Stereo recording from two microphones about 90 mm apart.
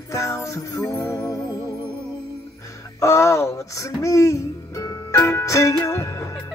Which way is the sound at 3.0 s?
35° left (ahead or behind).